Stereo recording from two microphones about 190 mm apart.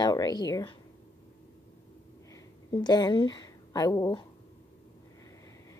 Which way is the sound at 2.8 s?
20° left (ahead or behind).